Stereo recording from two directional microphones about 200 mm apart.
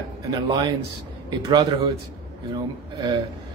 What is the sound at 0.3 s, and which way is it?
Speech, 20° right (ahead or behind).